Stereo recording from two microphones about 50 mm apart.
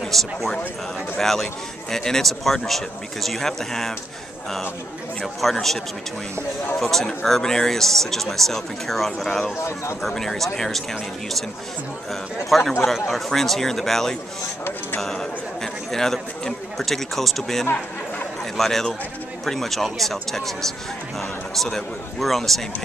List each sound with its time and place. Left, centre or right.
0.0 s speech: centre
5.2 s speech: centre
6.8 s speech: centre
9.6 s speech: left
10.0 s speech: centre
12.4 s a man's voice: centre